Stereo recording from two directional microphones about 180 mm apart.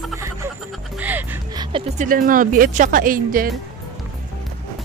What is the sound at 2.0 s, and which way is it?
Speech, 50° right (ahead or behind).